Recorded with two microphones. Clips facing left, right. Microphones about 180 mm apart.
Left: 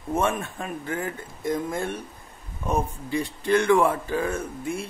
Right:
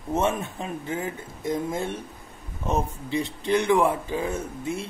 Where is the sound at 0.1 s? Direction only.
20° right (ahead or behind).